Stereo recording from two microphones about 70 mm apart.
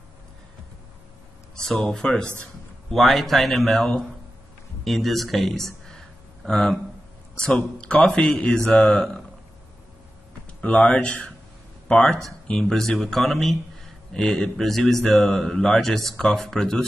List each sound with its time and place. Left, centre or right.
1.5 s a man's voice: centre
3.5 s a man's voice: centre
5.7 s a sound: centre
7.4 s a man's voice: centre
10.6 s a man's voice: left